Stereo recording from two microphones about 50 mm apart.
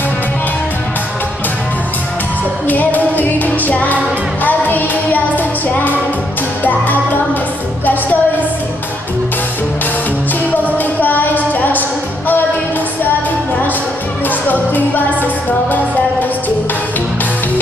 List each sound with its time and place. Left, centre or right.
2.7 s music: left
10.6 s music: left